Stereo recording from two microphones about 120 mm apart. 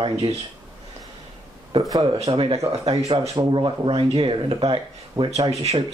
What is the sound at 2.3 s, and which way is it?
Speech, 45° right (ahead or behind).